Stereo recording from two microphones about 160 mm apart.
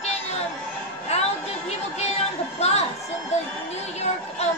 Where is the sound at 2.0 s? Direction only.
40° left (ahead or behind).